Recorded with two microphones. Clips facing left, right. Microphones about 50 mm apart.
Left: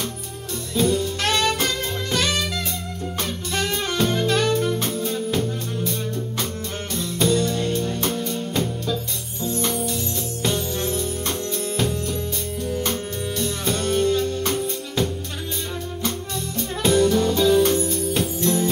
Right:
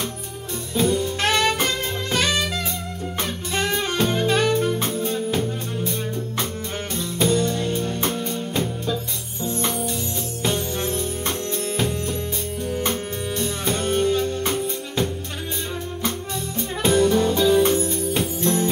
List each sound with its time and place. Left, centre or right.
0.7 s music: centre
1.2 s music: centre
16.5 s music: centre